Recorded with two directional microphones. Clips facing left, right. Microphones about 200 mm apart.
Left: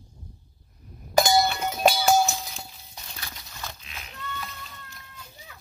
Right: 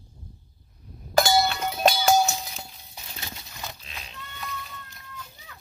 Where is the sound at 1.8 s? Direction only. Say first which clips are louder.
Even; 5° left (ahead or behind).